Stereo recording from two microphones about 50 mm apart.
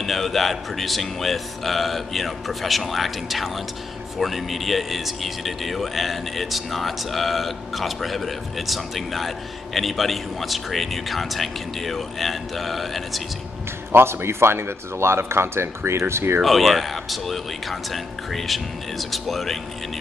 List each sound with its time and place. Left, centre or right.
0.0 s speech: centre
13.9 s speech: right
16.4 s speech: centre